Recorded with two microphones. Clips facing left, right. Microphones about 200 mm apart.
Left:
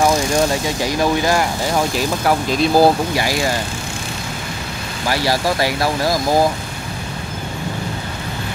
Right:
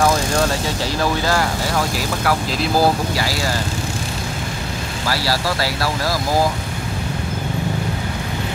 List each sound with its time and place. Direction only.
0.8 s speech: 15° left (ahead or behind)
5.0 s speech: 20° left (ahead or behind)